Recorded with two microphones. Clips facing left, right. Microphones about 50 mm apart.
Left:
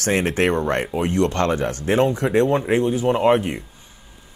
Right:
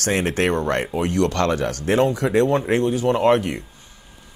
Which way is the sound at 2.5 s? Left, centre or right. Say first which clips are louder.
Even; centre.